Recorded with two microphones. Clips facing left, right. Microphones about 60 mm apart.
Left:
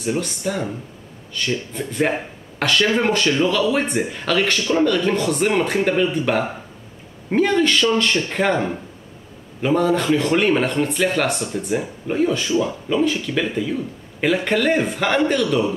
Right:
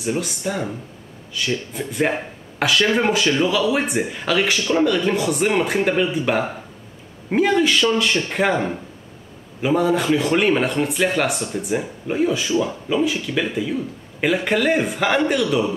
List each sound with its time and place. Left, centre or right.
0.0 s a man's voice: centre